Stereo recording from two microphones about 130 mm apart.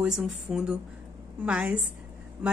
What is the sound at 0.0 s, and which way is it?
A woman's voice, 5° right (ahead or behind).